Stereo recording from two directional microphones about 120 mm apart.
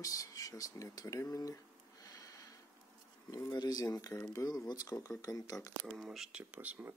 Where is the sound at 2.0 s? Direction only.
30° left (ahead or behind).